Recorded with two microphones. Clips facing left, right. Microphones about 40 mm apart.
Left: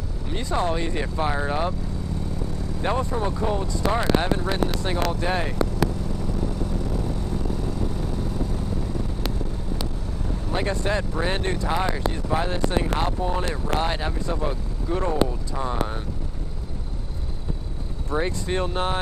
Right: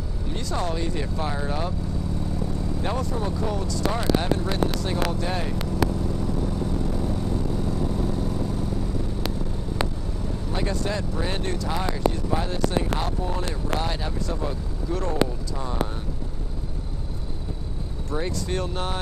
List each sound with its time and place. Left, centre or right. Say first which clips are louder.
0.3 s speech: left 4 dB; left
2.8 s speech: left 5 dB; left
10.5 s speech: left 3 dB; left
18.1 s speech: left 3 dB; left